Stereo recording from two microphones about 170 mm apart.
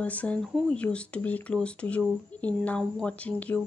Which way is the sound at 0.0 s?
10° left (ahead or behind).